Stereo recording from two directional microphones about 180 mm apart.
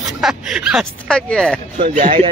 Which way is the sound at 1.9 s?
50° right (ahead or behind).